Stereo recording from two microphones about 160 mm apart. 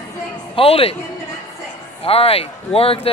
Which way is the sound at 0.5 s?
35° left (ahead or behind).